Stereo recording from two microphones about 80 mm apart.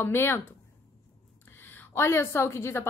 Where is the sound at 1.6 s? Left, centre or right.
Left.